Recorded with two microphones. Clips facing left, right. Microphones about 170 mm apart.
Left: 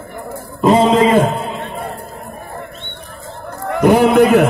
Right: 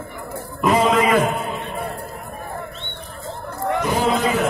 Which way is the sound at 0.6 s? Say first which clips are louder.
Left 6 dB; 30° left (ahead or behind).